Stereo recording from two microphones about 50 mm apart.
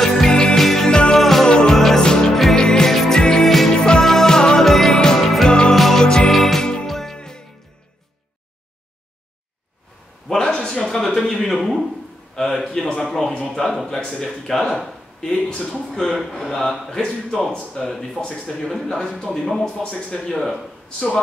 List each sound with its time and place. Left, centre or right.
0.0 s music: centre
1.5 s music: centre
3.4 s music: centre
5.5 s music: centre
10.2 s a sound: centre
12.4 s speech: centre
14.0 s speech: centre
15.5 s speech: centre
15.9 s speech: centre
18.2 s speech: centre
19.6 s speech: centre